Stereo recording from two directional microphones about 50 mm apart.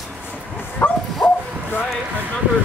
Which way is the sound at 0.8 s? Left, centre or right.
Left.